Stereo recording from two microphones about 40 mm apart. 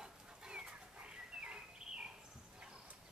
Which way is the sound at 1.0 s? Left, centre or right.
Right.